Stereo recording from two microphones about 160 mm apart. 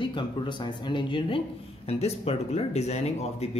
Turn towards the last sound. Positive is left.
turn(degrees=40)  # may be behind; listen again after turning